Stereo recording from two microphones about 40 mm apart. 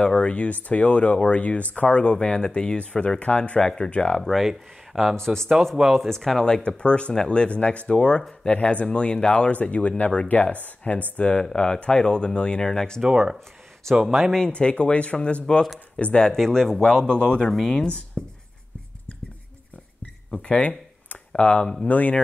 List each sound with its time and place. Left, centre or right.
0.0 s speech: left
3.9 s speech: left
4.2 s speech: centre
4.5 s speech: centre
5.2 s speech: centre
6.4 s speech: left
11.5 s speech: left
14.5 s speech: left
16.3 s speech: centre
17.5 s speech: centre
18.2 s writing: centre
20.4 s a sound: left
21.3 s speech: left
21.8 s speech: left